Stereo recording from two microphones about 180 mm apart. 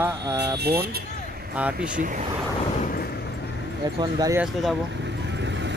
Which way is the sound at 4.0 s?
20° right (ahead or behind).